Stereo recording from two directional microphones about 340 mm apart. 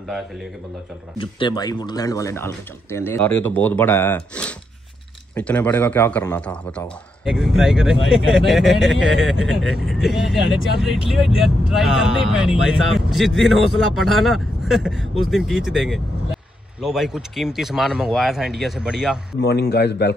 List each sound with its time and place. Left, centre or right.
1.1 s speech: centre
19.4 s speech: left